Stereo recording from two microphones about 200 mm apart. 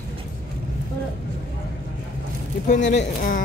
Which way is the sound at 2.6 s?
40° left (ahead or behind).